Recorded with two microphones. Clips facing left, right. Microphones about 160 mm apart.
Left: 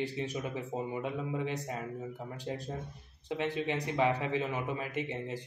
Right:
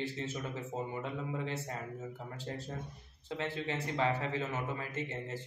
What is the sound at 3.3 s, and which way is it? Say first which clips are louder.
Speech: left 4 dB; 15° left (ahead or behind).